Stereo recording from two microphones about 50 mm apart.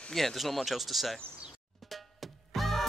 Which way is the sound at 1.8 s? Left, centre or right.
Centre.